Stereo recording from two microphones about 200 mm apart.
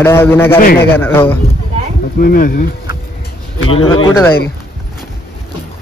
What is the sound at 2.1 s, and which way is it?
Speech, 45° left (ahead or behind).